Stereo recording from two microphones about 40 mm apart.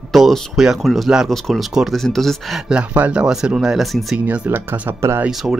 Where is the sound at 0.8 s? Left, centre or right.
Centre.